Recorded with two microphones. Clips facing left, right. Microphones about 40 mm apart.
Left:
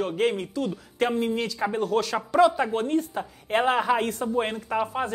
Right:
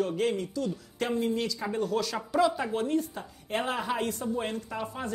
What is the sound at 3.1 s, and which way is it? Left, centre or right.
A woman's voice, left.